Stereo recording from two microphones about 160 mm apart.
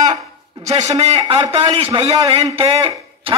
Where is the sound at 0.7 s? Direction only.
40° right (ahead or behind).